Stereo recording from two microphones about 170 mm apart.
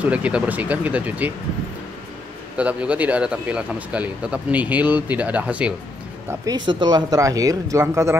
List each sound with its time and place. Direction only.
0.0 s speech: 5° right (ahead or behind)
2.5 s speech: 5° right (ahead or behind)
6.4 s speech: 25° right (ahead or behind)